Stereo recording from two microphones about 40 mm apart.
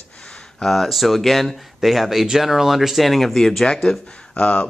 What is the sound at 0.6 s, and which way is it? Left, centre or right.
Speech, centre.